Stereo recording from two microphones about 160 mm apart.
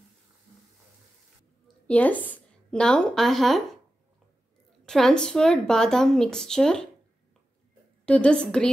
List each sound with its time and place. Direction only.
1.9 s speech: 10° left (ahead or behind)
4.8 s speech: 5° left (ahead or behind)
8.0 s a woman's voice: 5° left (ahead or behind)